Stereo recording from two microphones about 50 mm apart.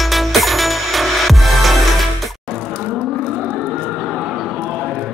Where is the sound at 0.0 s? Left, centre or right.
Centre.